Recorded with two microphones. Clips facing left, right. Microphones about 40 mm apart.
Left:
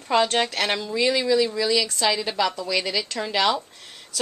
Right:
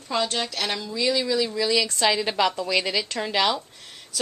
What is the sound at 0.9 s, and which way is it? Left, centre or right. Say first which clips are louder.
Speech: even; left.